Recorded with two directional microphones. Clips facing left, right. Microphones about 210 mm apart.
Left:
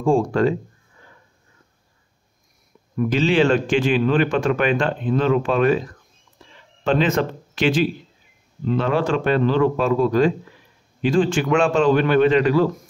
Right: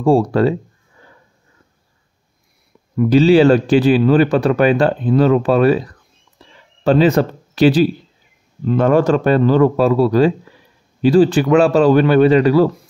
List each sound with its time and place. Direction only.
0.0 s speech: 35° right (ahead or behind)
3.1 s speech: 35° right (ahead or behind)
8.6 s speech: 45° right (ahead or behind)